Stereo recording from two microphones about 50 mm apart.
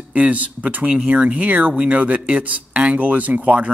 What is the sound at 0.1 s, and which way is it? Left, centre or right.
Speech, right.